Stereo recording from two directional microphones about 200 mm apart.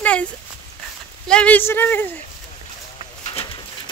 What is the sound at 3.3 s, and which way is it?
Pigeon, 30° left (ahead or behind).